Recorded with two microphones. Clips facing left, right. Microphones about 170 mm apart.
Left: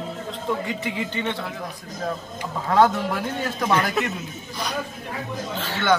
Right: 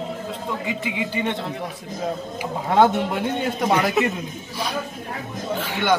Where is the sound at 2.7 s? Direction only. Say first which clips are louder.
Right 1 dB; 25° right (ahead or behind).